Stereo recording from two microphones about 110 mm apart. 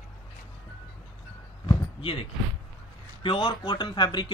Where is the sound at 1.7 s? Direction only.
55° left (ahead or behind).